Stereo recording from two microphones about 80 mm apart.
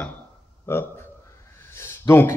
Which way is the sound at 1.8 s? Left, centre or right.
Left.